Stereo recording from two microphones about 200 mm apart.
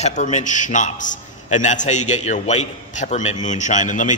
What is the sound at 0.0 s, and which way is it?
A man's voice, 35° left (ahead or behind).